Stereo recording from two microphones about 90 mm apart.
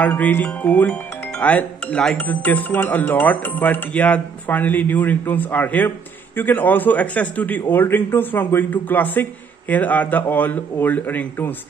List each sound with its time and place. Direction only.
0.0 s speech: 20° left (ahead or behind)